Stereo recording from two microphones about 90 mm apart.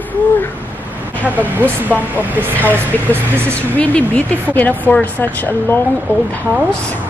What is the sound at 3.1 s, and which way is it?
Speech, 25° right (ahead or behind).